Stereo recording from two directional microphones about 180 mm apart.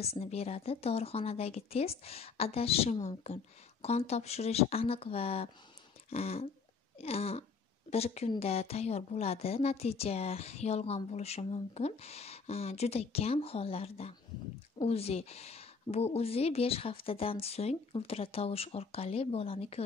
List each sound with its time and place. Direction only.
0.0 s a woman's voice: 35° left (ahead or behind)
6.0 s a sound: 35° left (ahead or behind)
7.0 s a woman's voice: 35° left (ahead or behind)